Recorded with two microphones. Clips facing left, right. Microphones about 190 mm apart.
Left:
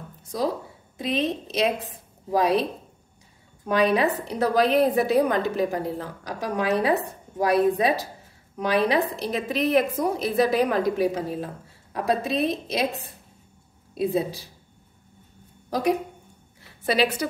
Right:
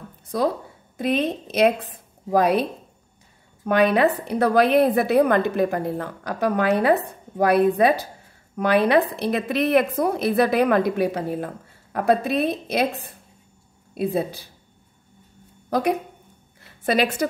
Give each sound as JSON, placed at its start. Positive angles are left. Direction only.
{"t": 0.3, "sound": "a woman's voice", "side_deg": -60}
{"t": 3.6, "sound": "a woman's voice", "side_deg": -60}
{"t": 15.7, "sound": "a woman's voice", "side_deg": -55}